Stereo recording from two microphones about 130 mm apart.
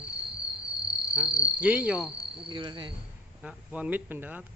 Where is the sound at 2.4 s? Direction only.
35° right (ahead or behind).